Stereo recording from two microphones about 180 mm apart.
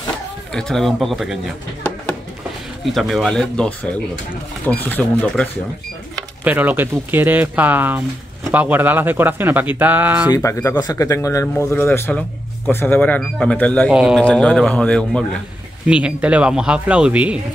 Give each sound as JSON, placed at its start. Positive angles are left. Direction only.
{"t": 0.5, "sound": "speech", "side_deg": 5}
{"t": 2.8, "sound": "speech", "side_deg": 0}
{"t": 6.4, "sound": "speech", "side_deg": -10}
{"t": 10.3, "sound": "speech", "side_deg": 15}
{"t": 13.8, "sound": "speech", "side_deg": -5}
{"t": 15.9, "sound": "speech", "side_deg": -5}